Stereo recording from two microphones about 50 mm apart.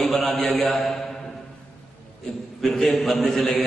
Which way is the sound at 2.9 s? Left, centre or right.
Centre.